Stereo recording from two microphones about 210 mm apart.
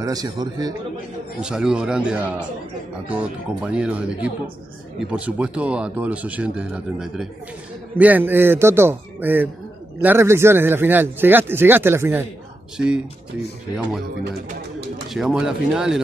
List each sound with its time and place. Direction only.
0.0 s a man's voice: 20° right (ahead or behind)
1.4 s speech: 5° right (ahead or behind)
15.1 s speech: centre (ahead or behind)